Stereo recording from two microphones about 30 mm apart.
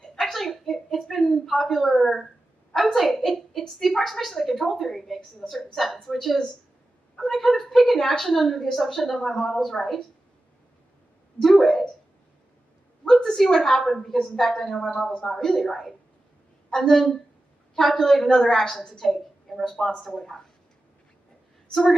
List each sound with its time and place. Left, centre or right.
0.0 s a sound: centre
2.8 s a woman's voice: centre
11.4 s a sound: centre
13.1 s a woman's voice: centre
14.8 s speech: left
15.4 s a woman's voice: centre
16.9 s a woman's voice: centre
18.9 s a woman's voice: centre